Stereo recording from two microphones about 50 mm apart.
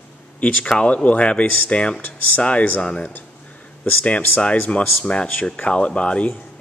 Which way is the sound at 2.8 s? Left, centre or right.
Centre.